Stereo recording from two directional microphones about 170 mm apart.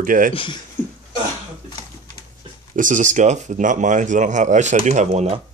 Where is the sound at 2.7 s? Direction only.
50° right (ahead or behind).